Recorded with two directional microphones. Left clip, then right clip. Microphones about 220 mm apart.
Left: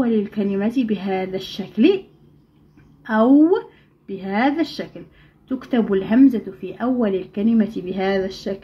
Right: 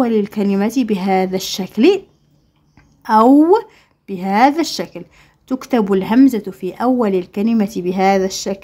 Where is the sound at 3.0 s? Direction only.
50° right (ahead or behind).